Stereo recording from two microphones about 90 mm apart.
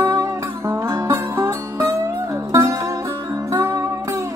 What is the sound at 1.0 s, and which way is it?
Music, 30° right (ahead or behind).